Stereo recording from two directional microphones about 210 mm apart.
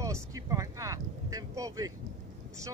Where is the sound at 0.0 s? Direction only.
15° right (ahead or behind).